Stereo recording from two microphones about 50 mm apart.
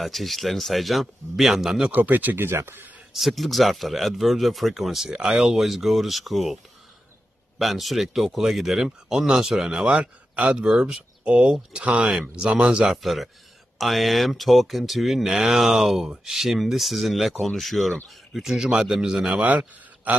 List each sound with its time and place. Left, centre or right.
0.0 s speech: centre
1.9 s speech: right
2.3 s speech: right
3.1 s speech: centre
9.8 s a man's voice: right
10.6 s speech: centre
12.8 s speech: centre
20.1 s a sound: right